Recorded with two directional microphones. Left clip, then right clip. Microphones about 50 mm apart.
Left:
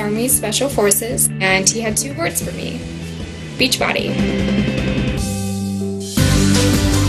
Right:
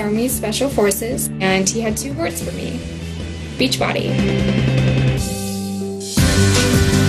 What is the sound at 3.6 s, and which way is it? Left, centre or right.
Speech, centre.